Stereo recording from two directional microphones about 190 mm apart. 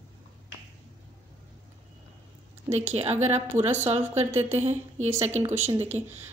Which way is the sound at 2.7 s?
25° right (ahead or behind).